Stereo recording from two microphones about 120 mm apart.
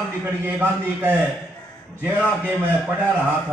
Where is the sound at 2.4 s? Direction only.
10° right (ahead or behind).